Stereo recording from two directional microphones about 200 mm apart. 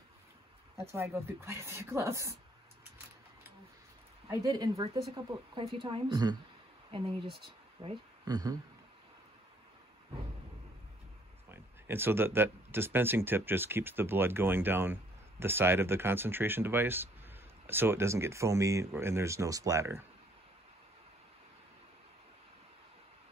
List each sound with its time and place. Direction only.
0.9 s speech: 15° right (ahead or behind)
4.3 s speech: 15° right (ahead or behind)
11.4 s speech: 10° right (ahead or behind)